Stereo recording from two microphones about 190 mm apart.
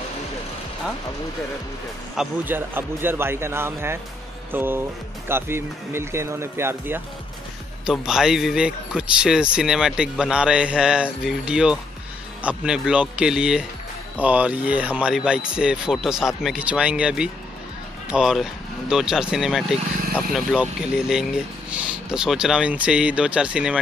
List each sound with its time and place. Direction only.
2.1 s a man's voice: 10° right (ahead or behind)